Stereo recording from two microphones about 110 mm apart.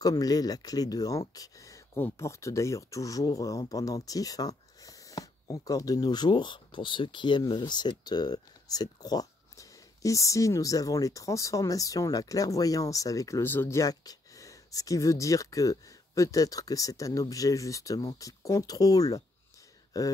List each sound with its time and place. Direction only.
0.0 s speech: 35° left (ahead or behind)